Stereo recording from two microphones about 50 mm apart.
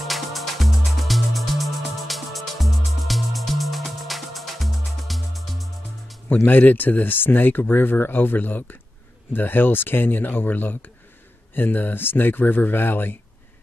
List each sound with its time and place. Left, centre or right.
0.0 s music: centre
6.2 s speech: left